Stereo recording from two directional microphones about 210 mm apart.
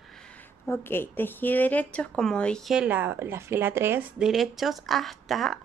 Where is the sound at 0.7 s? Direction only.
10° left (ahead or behind).